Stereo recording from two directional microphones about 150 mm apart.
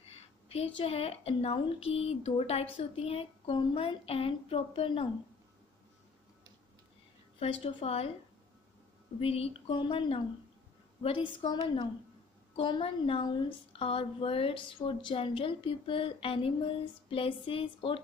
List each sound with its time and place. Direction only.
0.5 s speech: 40° left (ahead or behind)
7.3 s speech: 40° left (ahead or behind)
9.2 s speech: 40° left (ahead or behind)